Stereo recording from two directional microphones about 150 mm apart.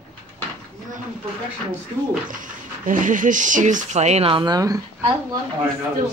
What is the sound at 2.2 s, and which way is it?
Speech, 65° right (ahead or behind).